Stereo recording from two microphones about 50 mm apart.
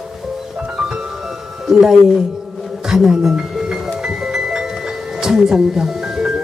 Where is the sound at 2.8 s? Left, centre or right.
Centre.